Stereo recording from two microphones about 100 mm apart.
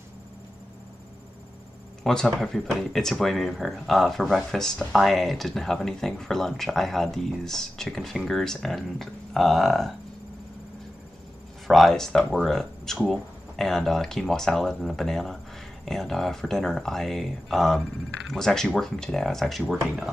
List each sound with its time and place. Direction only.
2.0 s speech: 5° left (ahead or behind)
11.6 s speech: centre (ahead or behind)